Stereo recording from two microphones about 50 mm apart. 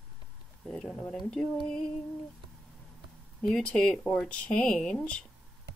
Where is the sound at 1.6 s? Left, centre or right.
Centre.